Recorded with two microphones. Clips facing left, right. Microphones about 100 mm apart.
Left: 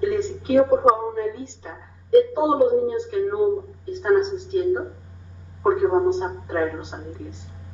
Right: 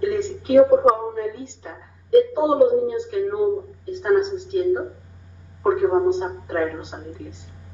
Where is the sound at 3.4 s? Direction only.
Centre (ahead or behind).